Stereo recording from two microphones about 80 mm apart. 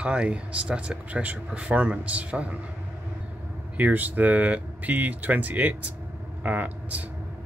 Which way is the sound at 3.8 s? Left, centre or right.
Right.